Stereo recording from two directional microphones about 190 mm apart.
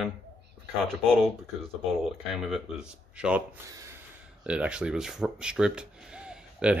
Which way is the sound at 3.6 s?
15° right (ahead or behind).